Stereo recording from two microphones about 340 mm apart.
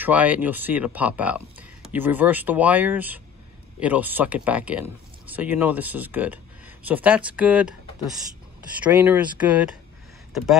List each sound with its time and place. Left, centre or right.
0.0 s speech: centre
8.8 s speech: centre